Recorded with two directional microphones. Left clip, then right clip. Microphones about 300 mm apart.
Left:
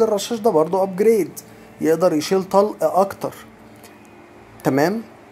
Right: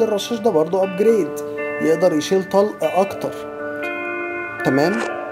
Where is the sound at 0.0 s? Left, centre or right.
Centre.